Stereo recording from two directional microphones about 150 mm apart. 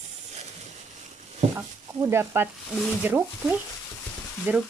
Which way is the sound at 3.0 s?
15° right (ahead or behind).